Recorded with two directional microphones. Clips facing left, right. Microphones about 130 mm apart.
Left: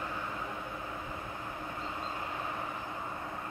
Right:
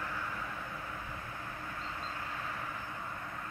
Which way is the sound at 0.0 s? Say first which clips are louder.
Left 2 dB; 20° left (ahead or behind).